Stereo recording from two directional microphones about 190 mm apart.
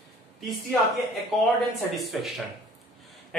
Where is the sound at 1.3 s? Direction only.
Centre (ahead or behind).